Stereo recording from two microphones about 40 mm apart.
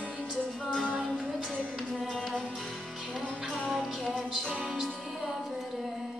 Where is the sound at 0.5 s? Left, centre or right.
Centre.